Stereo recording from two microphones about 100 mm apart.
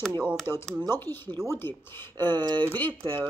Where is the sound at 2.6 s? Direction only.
20° left (ahead or behind).